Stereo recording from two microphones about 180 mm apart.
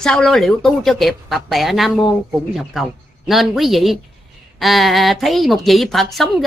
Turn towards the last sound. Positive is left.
turn(degrees=0)  # may be behind; listen again after turning